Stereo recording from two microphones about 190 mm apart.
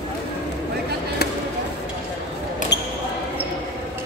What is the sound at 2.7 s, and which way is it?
Basketball bounce, 65° left (ahead or behind).